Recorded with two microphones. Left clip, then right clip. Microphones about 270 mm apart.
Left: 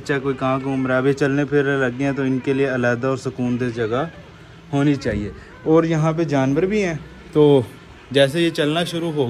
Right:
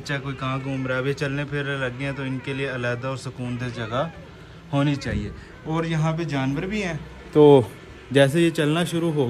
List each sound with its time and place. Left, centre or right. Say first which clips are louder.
0.0 s a man's voice: left 8 dB; centre
7.3 s speech: right 1 dB; right
8.1 s speech: left 2 dB; centre